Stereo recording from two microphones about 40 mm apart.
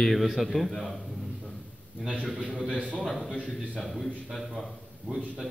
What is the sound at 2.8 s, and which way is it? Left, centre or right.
Speech, right.